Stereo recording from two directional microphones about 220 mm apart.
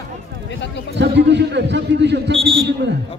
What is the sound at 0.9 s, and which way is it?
A man's voice, 50° right (ahead or behind).